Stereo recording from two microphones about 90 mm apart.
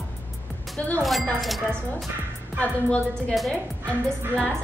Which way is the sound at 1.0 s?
Centre (ahead or behind).